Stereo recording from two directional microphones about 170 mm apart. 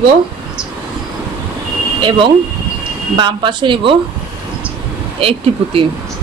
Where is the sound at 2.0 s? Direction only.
30° right (ahead or behind).